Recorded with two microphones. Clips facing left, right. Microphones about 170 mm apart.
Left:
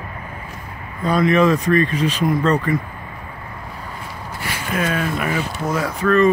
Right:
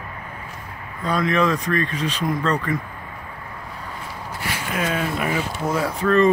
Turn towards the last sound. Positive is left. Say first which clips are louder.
# left 2 dB
turn(degrees=-20)  # may be behind; listen again after turning